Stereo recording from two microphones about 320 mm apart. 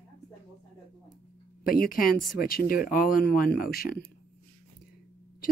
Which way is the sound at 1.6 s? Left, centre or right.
Left.